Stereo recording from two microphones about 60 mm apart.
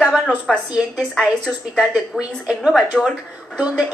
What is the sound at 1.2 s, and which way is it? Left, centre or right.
A woman's voice, centre.